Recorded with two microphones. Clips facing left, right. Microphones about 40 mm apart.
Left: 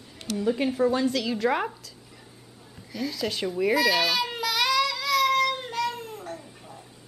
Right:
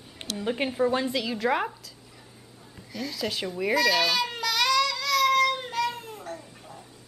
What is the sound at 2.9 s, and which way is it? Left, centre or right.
Baby cry, centre.